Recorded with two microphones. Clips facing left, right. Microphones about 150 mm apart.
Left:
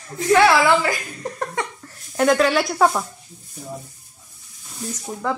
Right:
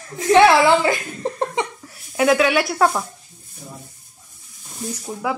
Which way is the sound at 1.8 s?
5° right (ahead or behind).